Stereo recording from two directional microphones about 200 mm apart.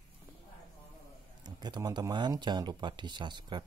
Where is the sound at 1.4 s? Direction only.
20° right (ahead or behind).